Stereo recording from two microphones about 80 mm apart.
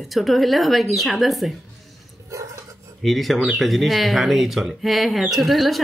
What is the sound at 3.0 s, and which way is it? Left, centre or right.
Speech, centre.